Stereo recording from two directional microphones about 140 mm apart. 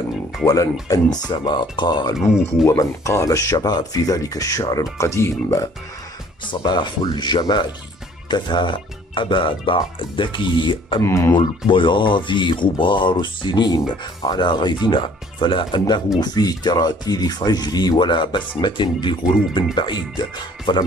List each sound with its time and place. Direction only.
0.8 s speech: 25° left (ahead or behind)
2.6 s speech: 20° left (ahead or behind)
6.6 s speech: 30° left (ahead or behind)
11.0 s speech: 20° left (ahead or behind)
11.3 s speech: 35° left (ahead or behind)